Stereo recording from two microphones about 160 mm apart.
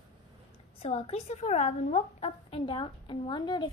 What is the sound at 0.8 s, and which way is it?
A woman's voice, 35° left (ahead or behind).